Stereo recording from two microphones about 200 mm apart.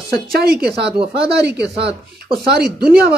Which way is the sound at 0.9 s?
25° right (ahead or behind).